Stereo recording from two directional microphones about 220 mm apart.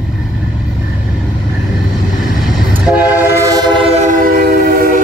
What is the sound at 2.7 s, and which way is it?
Train, 10° right (ahead or behind).